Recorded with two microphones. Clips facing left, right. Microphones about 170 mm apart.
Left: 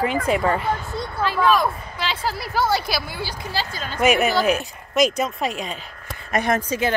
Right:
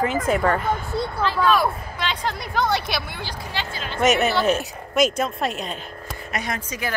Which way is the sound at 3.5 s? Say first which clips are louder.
Left 1 dB; 40° left (ahead or behind).